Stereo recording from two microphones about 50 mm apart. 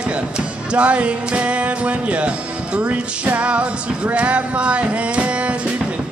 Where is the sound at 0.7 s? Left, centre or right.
Right.